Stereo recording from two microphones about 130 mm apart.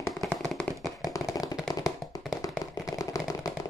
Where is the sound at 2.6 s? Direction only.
25° left (ahead or behind).